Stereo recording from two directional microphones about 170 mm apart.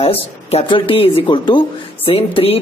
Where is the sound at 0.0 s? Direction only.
35° left (ahead or behind).